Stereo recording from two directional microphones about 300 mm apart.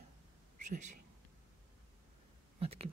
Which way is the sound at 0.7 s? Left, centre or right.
Right.